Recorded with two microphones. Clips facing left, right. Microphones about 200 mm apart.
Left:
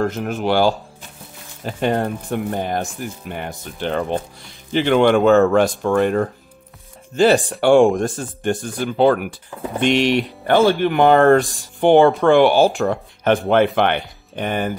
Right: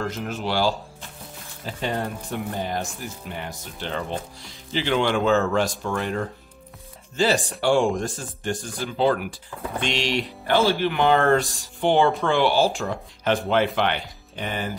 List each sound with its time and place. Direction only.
0.0 s speech: 55° left (ahead or behind)